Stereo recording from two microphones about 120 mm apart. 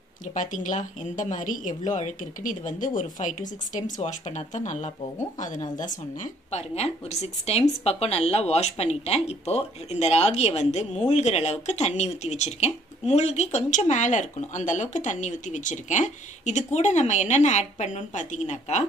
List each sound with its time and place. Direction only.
0.3 s speech: 90° left
5.4 s speech: 90° left
6.5 s speech: 65° left (ahead or behind)